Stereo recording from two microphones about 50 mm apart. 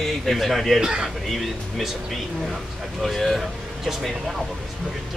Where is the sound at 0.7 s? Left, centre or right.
Centre.